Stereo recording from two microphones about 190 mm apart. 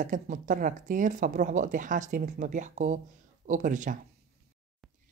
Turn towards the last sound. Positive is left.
turn(degrees=-40)  # may be behind; listen again after turning